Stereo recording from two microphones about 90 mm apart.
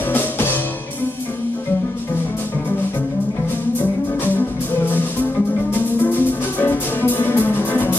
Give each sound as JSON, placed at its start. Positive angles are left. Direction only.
{"t": 0.1, "sound": "music", "side_deg": 20}
{"t": 5.7, "sound": "music", "side_deg": 20}